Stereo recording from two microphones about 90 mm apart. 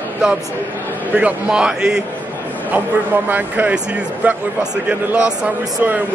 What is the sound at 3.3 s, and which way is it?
Speech, 20° right (ahead or behind).